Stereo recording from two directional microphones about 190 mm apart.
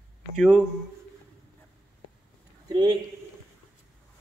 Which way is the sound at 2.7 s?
20° right (ahead or behind).